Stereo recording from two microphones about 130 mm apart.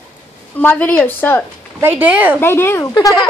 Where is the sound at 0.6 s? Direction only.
15° left (ahead or behind).